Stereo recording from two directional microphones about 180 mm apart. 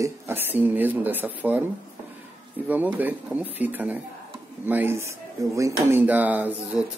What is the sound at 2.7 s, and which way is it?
Speech, 10° right (ahead or behind).